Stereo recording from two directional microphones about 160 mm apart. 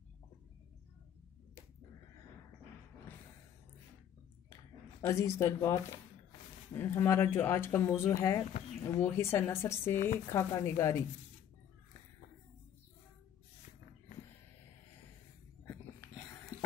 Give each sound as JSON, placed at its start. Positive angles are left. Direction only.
{"t": 5.0, "sound": "speech", "side_deg": 20}
{"t": 9.9, "sound": "speech", "side_deg": 60}
{"t": 10.3, "sound": "speech", "side_deg": 20}